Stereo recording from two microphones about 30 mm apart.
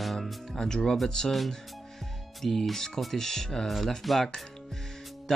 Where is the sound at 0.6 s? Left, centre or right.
Left.